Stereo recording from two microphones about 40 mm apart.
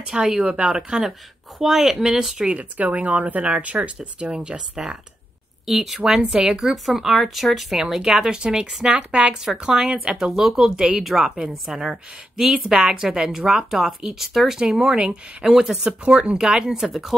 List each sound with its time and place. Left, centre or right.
0.1 s speech: centre
1.6 s speech: centre
2.5 s speech: right
5.7 s speech: centre
7.0 s speech: centre; by 9.3 s right
9.3 s speech: centre
10.1 s speech: centre
11.9 s speech: centre
14.6 s speech: centre
16.8 s speech: centre